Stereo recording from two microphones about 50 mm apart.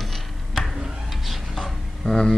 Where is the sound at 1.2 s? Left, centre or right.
Centre.